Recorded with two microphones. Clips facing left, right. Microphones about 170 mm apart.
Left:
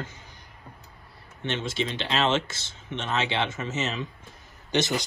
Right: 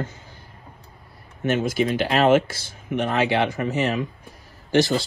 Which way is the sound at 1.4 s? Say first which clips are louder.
Right 8 dB; 25° left (ahead or behind).